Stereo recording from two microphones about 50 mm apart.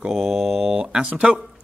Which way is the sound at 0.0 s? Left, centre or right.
Centre.